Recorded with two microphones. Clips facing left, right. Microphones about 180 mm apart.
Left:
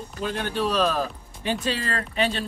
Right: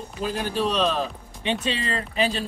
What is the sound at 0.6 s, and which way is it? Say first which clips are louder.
Speech: left 1 dB; 5° left (ahead or behind).